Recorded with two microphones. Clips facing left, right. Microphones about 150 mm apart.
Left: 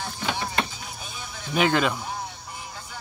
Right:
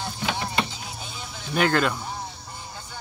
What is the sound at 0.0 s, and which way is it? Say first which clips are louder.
Vehicle: right 1 dB; 20° right (ahead or behind).